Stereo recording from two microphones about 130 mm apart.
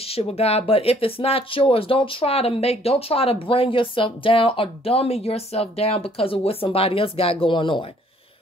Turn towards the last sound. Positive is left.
turn(degrees=40)  # may be behind; listen again after turning